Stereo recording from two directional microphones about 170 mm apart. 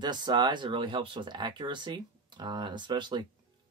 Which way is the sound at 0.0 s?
25° right (ahead or behind).